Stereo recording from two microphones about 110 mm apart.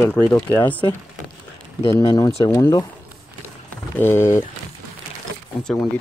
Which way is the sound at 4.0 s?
20° left (ahead or behind).